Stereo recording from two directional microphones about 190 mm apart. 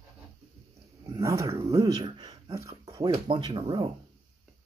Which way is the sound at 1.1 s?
15° right (ahead or behind).